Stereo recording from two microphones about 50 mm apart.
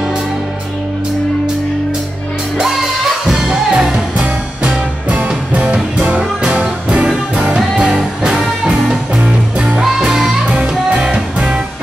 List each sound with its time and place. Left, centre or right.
2.6 s music: centre
5.1 s music: right; by 10.3 s centre
10.4 s music: right